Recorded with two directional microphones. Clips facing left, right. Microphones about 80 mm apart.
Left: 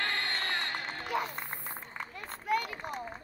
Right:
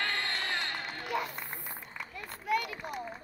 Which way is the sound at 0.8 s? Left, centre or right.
Left.